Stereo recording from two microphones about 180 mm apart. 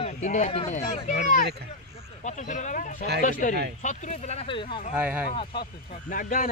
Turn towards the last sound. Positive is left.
turn(degrees=50)  # may be behind; listen again after turning